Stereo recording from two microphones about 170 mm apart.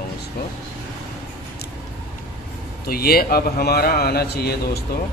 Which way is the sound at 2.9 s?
65° left (ahead or behind).